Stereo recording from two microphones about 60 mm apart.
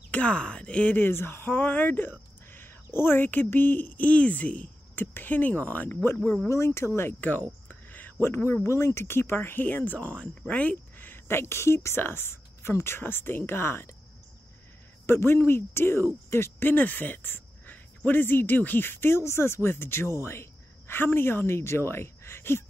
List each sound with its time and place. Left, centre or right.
0.1 s speech: centre
6.5 s speech: left
7.2 s speech: left
7.6 s a sound: left
8.6 s speech: left
15.0 s speech: left
16.7 s speech: left